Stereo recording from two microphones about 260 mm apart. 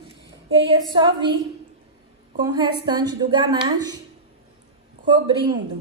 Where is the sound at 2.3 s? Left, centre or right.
Centre.